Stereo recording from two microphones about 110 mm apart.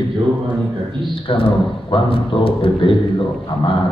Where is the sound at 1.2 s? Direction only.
50° left (ahead or behind).